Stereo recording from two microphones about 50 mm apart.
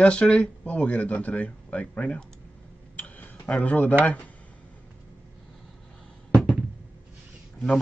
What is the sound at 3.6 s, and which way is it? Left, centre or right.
Speech, left.